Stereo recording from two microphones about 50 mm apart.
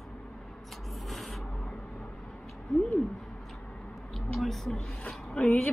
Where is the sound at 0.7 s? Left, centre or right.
Centre.